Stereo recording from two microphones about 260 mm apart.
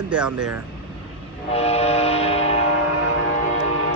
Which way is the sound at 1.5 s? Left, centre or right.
Left.